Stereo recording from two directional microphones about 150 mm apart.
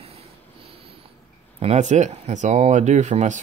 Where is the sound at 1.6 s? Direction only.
45° right (ahead or behind).